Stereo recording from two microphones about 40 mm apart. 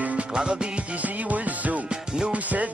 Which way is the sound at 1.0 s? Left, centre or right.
Right.